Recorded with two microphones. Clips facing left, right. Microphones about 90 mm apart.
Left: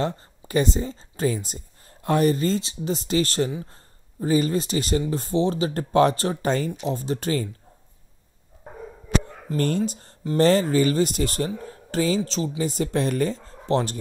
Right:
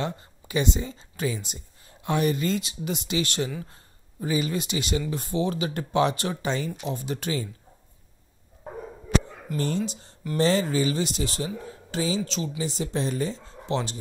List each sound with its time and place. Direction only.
0.0 s speech: 40° left (ahead or behind)
9.6 s speech: 50° left (ahead or behind)